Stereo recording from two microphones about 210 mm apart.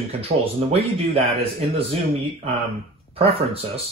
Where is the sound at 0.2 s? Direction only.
30° right (ahead or behind).